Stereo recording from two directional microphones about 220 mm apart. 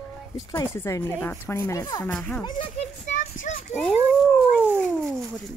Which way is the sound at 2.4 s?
25° left (ahead or behind).